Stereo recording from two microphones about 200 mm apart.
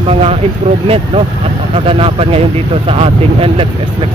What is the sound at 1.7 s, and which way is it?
Speech, 30° right (ahead or behind).